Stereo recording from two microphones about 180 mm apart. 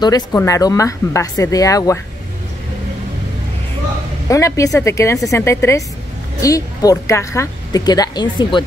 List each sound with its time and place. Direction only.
0.0 s speech: 15° left (ahead or behind)
4.3 s speech: 15° left (ahead or behind)